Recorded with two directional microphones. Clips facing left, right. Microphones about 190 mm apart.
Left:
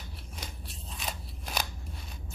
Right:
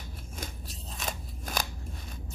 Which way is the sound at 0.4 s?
45° right (ahead or behind).